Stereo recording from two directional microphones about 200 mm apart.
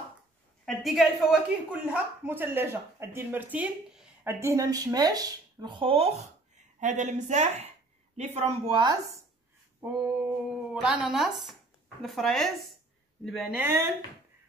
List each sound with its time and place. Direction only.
0.7 s speech: centre (ahead or behind); by 9.2 s 25° right (ahead or behind)
9.8 s speech: 10° right (ahead or behind)